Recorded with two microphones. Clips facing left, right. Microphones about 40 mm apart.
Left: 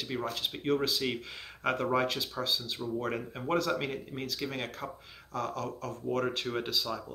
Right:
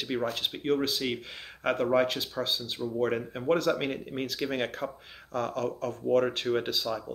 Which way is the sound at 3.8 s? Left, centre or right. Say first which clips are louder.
Right 3 dB; right.